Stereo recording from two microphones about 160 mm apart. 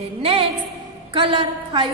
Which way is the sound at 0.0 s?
35° right (ahead or behind).